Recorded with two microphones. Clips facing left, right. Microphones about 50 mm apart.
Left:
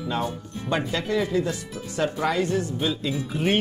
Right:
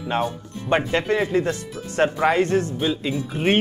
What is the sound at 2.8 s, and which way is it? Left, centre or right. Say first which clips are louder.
Speech: right 3 dB; right.